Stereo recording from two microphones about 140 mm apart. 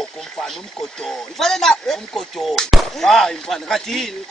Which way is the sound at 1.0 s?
5° left (ahead or behind).